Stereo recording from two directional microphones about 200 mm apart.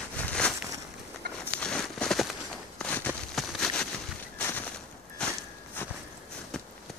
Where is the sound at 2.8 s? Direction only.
10° left (ahead or behind).